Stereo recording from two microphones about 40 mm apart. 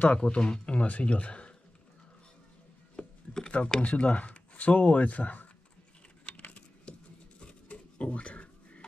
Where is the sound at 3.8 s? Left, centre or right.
Left.